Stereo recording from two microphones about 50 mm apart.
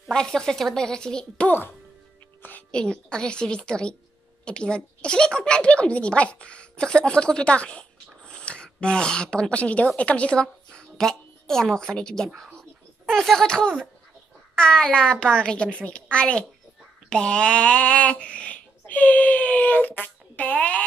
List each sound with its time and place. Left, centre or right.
0.1 s a woman's voice: centre
2.7 s a woman's voice: centre